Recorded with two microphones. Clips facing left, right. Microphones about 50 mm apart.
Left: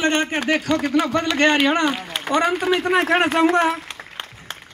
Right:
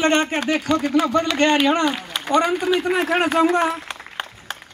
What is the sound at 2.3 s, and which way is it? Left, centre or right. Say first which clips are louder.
Speech: right 1 dB; left.